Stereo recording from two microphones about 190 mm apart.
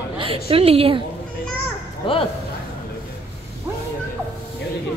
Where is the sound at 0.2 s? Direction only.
30° right (ahead or behind).